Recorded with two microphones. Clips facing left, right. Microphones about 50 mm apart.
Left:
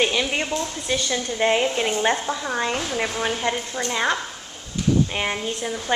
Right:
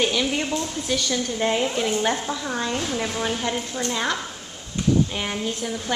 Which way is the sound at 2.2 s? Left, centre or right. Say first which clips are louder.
Left 2 dB; centre.